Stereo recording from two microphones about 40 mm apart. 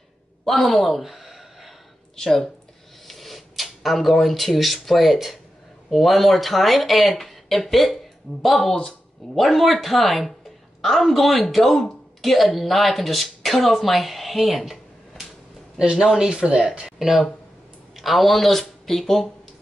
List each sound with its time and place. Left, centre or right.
0.5 s speech: centre
1.0 s a sound: centre
2.1 s a woman's voice: centre
15.8 s speech: centre
17.9 s speech: centre